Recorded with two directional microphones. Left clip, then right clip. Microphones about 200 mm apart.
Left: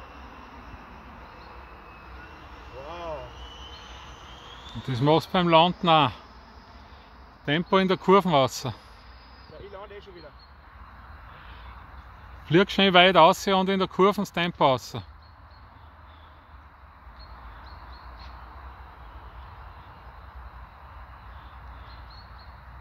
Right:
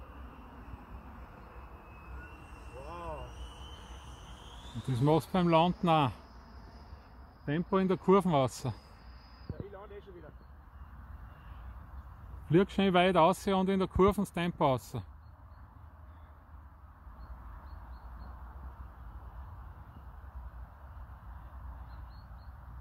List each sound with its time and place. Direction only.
4.4 s speech: centre (ahead or behind)
7.4 s speech: 15° left (ahead or behind); by 8.7 s centre (ahead or behind)
9.8 s a sound: 50° left (ahead or behind)
12.4 s speech: 5° left (ahead or behind)